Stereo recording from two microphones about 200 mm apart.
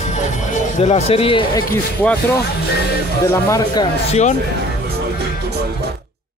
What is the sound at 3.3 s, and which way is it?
Speech, 15° left (ahead or behind).